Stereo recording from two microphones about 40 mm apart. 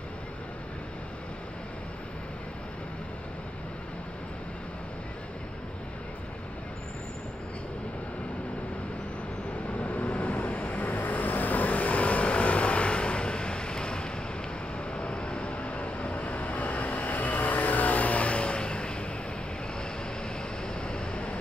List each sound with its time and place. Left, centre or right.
9.7 s vehicle: left
20.6 s vehicle: left